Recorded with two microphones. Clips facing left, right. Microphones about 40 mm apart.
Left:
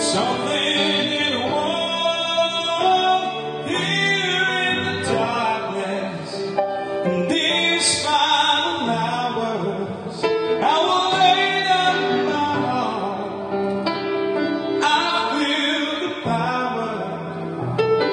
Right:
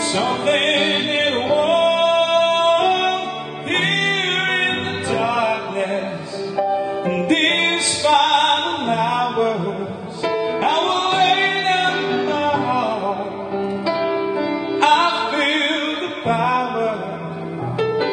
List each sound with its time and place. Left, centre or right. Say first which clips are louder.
0.7 s music: right 2 dB; centre
3.8 s music: right 1 dB; centre
5.2 s music: right 6 dB; centre
7.2 s music: right 6 dB; right
8.1 s music: right 3 dB; centre
10.7 s music: even; centre
16.3 s music: right 5 dB; right